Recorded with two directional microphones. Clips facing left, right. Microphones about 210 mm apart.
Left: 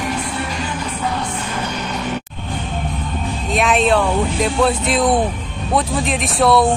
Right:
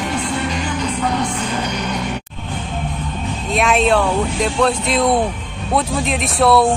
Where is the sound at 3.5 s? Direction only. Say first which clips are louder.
Even; centre (ahead or behind).